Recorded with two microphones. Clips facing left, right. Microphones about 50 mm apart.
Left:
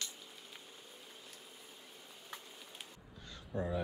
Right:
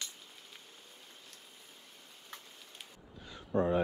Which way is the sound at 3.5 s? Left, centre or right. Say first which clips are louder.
Right 8 dB; right.